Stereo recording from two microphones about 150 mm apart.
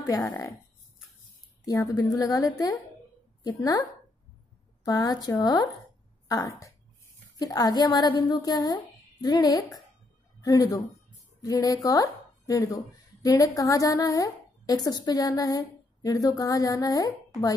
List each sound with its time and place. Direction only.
0.0 s a woman's voice: 25° left (ahead or behind)
1.7 s a woman's voice: 20° left (ahead or behind)
4.8 s a woman's voice: 25° left (ahead or behind)